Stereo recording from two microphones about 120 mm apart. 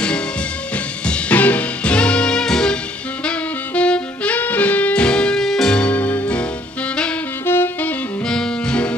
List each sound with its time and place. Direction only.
1.0 s music: 10° left (ahead or behind)
3.3 s saxophone: 10° left (ahead or behind)
8.3 s music: 5° left (ahead or behind)